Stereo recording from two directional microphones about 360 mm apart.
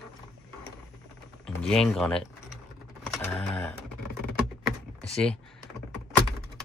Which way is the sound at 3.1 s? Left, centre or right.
Centre.